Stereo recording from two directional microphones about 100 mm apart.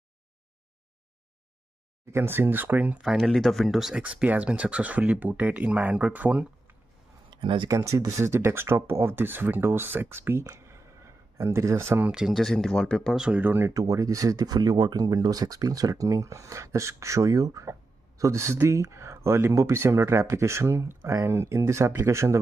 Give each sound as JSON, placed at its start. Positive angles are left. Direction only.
{"t": 2.0, "sound": "speech", "side_deg": -25}
{"t": 3.2, "sound": "speech", "side_deg": 5}
{"t": 4.0, "sound": "speech", "side_deg": -15}
{"t": 7.2, "sound": "a sound", "side_deg": -55}
{"t": 7.7, "sound": "speech", "side_deg": -30}
{"t": 10.4, "sound": "a sound", "side_deg": -30}
{"t": 11.3, "sound": "speech", "side_deg": -30}
{"t": 12.1, "sound": "speech", "side_deg": -5}
{"t": 13.3, "sound": "speech", "side_deg": -20}
{"t": 13.7, "sound": "speech", "side_deg": -35}